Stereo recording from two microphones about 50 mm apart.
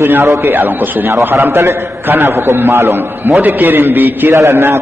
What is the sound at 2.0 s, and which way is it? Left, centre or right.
A man's voice, right.